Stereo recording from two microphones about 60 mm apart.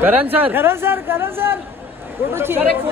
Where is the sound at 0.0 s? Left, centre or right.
Right.